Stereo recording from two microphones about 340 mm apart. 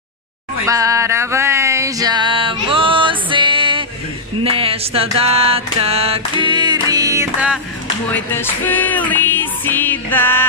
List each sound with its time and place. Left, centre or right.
0.7 s music: centre
4.4 s a sound: centre
5.1 s music: centre
8.1 s music: centre